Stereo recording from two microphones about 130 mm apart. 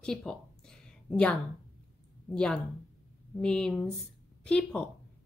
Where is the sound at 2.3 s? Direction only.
5° left (ahead or behind).